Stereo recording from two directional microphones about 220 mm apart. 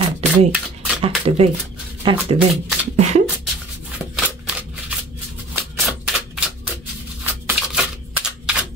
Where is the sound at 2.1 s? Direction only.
5° right (ahead or behind).